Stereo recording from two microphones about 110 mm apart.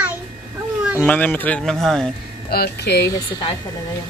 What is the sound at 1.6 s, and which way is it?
Speech, 5° left (ahead or behind).